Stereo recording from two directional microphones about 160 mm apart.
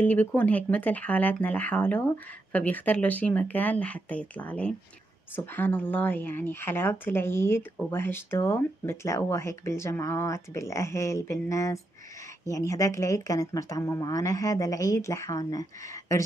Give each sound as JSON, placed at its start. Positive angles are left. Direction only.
{"t": 0.0, "sound": "speech", "side_deg": 10}